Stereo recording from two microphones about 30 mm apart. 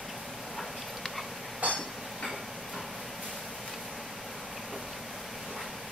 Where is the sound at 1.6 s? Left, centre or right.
Right.